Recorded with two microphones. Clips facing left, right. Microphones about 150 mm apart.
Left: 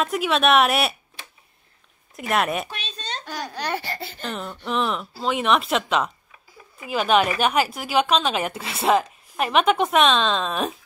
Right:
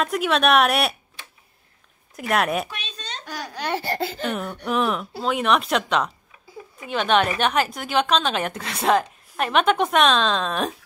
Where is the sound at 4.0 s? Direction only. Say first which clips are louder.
Right 9 dB; 90° right.